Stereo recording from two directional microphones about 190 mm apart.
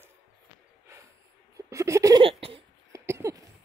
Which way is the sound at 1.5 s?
15° right (ahead or behind).